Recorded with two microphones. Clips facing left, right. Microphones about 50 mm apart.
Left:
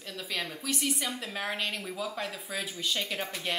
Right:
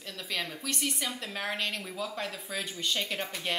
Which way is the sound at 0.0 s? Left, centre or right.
Centre.